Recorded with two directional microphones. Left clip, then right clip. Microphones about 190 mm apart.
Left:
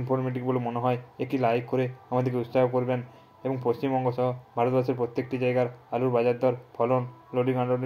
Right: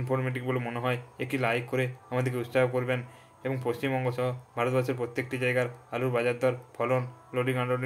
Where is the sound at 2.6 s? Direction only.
10° right (ahead or behind).